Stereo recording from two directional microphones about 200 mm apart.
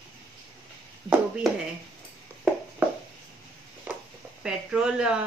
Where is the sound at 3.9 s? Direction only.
5° right (ahead or behind).